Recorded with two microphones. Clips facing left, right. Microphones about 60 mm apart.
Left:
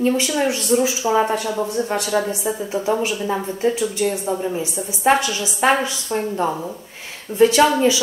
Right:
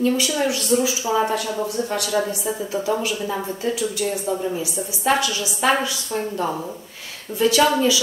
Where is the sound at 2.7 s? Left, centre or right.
Left.